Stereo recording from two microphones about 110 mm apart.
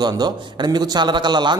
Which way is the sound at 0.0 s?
40° right (ahead or behind).